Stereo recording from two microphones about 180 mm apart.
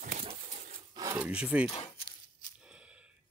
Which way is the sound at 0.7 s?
20° right (ahead or behind).